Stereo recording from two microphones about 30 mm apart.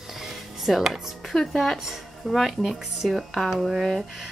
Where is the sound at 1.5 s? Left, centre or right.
Centre.